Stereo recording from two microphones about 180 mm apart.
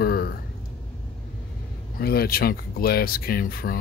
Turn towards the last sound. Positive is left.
turn(degrees=55)  # may be behind; listen again after turning